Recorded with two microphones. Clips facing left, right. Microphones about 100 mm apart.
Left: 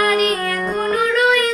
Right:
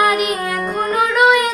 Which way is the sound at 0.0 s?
15° right (ahead or behind).